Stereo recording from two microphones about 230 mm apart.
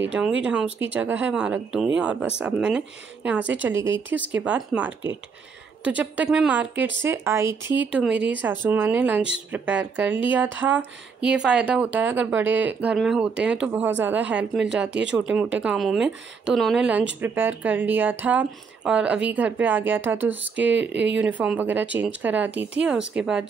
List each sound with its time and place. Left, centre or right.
0.4 s speech: centre
14.9 s speech: right
15.1 s speech: centre